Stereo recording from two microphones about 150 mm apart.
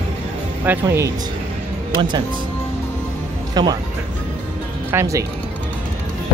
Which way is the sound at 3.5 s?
30° right (ahead or behind).